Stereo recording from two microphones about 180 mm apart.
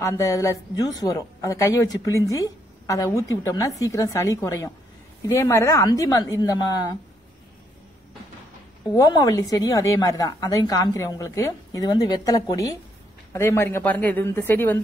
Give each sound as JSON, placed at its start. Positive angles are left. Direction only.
{"t": 0.0, "sound": "a woman's voice", "side_deg": 15}
{"t": 8.9, "sound": "a woman's voice", "side_deg": 20}